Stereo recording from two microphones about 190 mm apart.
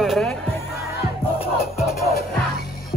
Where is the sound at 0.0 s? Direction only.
Centre (ahead or behind).